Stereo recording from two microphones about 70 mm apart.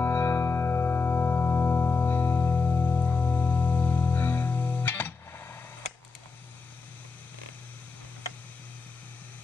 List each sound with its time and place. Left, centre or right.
0.0 s music: left